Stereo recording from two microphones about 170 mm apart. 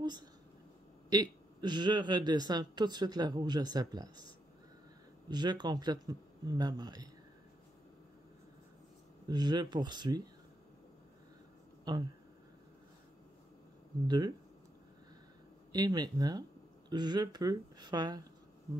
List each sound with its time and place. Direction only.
0.0 s a sound: 25° right (ahead or behind)
1.1 s speech: 25° right (ahead or behind)
5.3 s speech: 25° right (ahead or behind)
9.3 s speech: 25° right (ahead or behind)
11.9 s speech: 25° right (ahead or behind)
14.0 s speech: 25° right (ahead or behind)
15.7 s speech: 25° right (ahead or behind)